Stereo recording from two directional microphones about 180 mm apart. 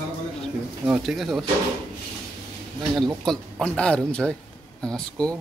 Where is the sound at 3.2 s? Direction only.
5° left (ahead or behind).